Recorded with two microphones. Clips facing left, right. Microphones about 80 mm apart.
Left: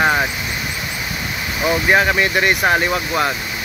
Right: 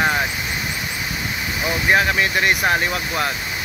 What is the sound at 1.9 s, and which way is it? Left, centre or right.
Speech, centre.